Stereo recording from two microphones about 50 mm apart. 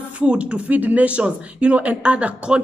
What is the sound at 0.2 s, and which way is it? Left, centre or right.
Speech, right.